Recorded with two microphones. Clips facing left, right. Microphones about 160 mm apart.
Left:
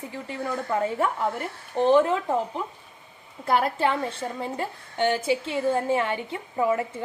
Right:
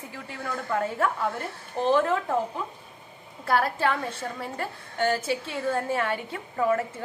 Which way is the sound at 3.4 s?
20° left (ahead or behind).